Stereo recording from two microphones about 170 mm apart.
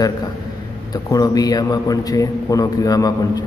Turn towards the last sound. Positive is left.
turn(degrees=20)  # may be behind; listen again after turning